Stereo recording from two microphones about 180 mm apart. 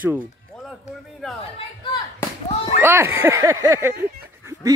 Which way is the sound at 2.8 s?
10° right (ahead or behind).